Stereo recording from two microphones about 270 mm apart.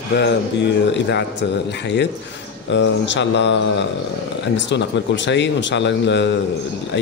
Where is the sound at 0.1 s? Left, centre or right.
Left.